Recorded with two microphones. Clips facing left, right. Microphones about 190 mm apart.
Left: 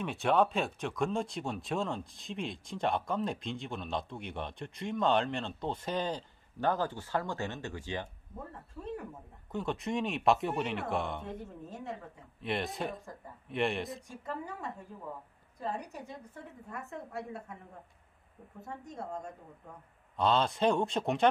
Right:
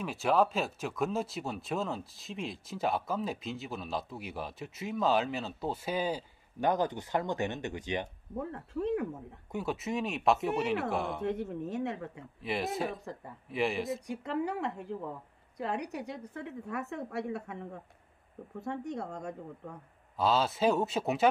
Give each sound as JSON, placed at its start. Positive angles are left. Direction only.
{"t": 0.0, "sound": "speech", "side_deg": 0}
{"t": 8.4, "sound": "a woman's voice", "side_deg": -70}
{"t": 9.5, "sound": "speech", "side_deg": -5}
{"t": 11.2, "sound": "a woman's voice", "side_deg": -75}
{"t": 12.4, "sound": "speech", "side_deg": 0}
{"t": 14.0, "sound": "a woman's voice", "side_deg": -75}
{"t": 18.6, "sound": "a woman's voice", "side_deg": -75}
{"t": 20.2, "sound": "speech", "side_deg": -5}